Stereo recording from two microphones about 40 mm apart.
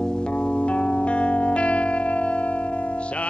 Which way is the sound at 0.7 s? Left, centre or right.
Left.